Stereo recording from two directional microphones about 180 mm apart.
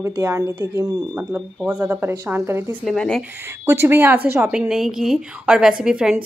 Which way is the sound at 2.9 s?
Centre (ahead or behind).